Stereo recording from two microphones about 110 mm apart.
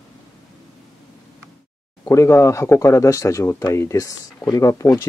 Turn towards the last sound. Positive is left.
turn(degrees=30)  # may be behind; listen again after turning